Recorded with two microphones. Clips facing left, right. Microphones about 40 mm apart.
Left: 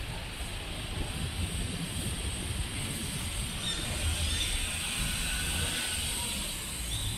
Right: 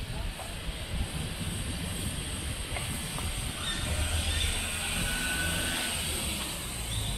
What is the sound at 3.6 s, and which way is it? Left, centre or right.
Train, centre.